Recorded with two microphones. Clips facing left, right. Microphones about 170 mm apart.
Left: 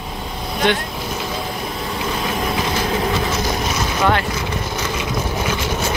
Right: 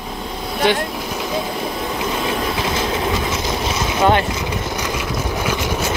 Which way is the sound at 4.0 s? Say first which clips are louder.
Right 3 dB; 25° right (ahead or behind).